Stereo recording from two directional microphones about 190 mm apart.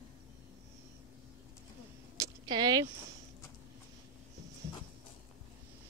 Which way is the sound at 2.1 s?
20° right (ahead or behind).